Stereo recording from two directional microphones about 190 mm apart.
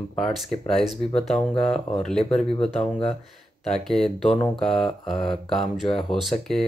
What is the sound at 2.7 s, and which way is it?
Speech, 30° left (ahead or behind).